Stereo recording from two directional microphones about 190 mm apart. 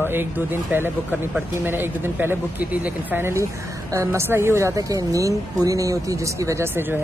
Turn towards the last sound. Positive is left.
turn(degrees=-10)  # may be behind; listen again after turning